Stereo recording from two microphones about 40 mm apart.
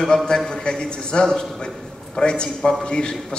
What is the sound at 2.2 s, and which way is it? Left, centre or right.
Speech, left.